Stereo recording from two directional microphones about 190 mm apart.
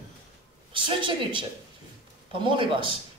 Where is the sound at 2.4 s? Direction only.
25° right (ahead or behind).